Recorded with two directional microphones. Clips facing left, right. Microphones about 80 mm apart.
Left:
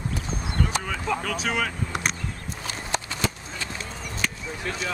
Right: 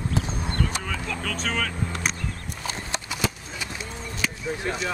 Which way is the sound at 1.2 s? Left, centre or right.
Centre.